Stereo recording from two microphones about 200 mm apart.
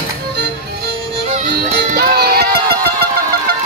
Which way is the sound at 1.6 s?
50° right (ahead or behind).